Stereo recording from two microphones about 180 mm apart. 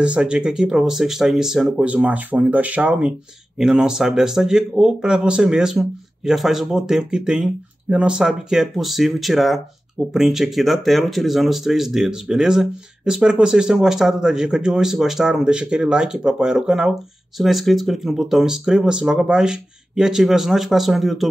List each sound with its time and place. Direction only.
0.0 s speech: 5° right (ahead or behind)